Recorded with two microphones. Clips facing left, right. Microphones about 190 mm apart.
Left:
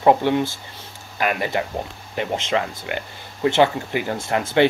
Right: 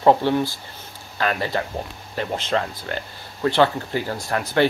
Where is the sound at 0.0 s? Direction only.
15° left (ahead or behind).